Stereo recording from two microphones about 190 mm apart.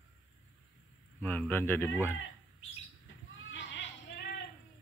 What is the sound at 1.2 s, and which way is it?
Speech, 10° left (ahead or behind).